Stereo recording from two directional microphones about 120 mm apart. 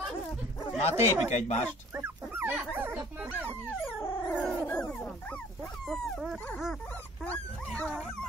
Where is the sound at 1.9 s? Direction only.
20° right (ahead or behind).